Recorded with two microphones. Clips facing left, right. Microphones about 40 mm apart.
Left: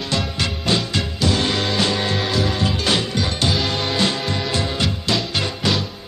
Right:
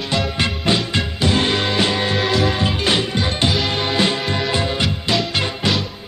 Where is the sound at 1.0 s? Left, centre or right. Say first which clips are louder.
Right 2 dB; right.